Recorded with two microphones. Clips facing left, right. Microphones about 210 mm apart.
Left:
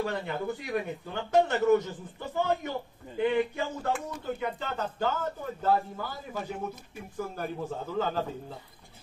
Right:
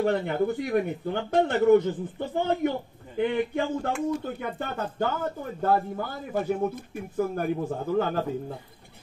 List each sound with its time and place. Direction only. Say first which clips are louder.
0.0 s a man's voice: right 7 dB; 55° right (ahead or behind)